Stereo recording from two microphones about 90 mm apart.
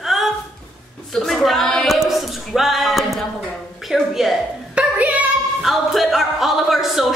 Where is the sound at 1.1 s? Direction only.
5° left (ahead or behind).